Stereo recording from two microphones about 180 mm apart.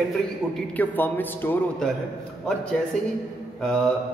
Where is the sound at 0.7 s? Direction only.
10° left (ahead or behind).